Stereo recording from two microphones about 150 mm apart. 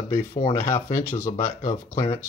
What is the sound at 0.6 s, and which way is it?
Speech, 50° left (ahead or behind).